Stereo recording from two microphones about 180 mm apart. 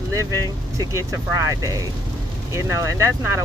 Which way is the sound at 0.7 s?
15° right (ahead or behind).